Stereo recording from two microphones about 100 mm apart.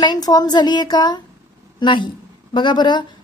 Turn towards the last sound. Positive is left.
turn(degrees=50)  # may be behind; listen again after turning